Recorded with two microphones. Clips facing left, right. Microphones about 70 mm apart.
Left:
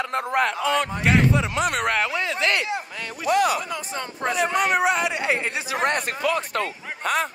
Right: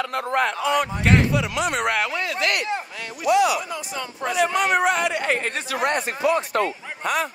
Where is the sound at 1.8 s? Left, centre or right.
Right.